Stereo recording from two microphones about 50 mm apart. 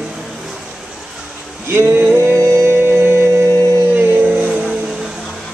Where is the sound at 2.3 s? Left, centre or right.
Right.